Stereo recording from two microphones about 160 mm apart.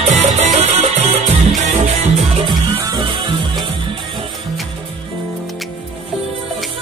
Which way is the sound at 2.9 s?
30° right (ahead or behind).